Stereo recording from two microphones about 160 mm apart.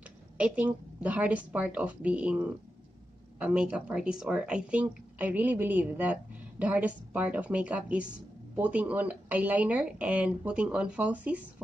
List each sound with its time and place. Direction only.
0.4 s speech: 10° right (ahead or behind)